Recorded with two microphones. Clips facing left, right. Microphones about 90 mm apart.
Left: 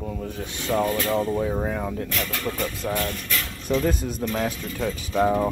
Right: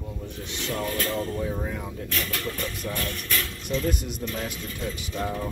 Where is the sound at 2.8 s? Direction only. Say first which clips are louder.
Left 5 dB; 45° left (ahead or behind).